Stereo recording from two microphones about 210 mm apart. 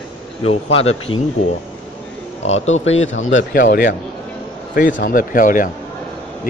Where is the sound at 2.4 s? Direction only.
30° left (ahead or behind).